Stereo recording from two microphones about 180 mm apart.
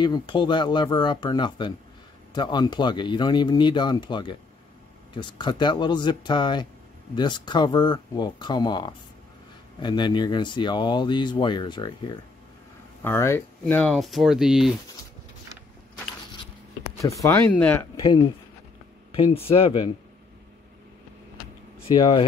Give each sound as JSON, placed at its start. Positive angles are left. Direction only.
{"t": 0.0, "sound": "speech", "side_deg": 25}
{"t": 13.0, "sound": "speech", "side_deg": 15}
{"t": 17.0, "sound": "speech", "side_deg": 15}
{"t": 18.0, "sound": "speech", "side_deg": 25}
{"t": 21.8, "sound": "speech", "side_deg": 25}